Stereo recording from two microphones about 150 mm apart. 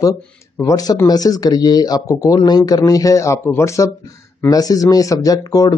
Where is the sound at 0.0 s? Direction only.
20° left (ahead or behind).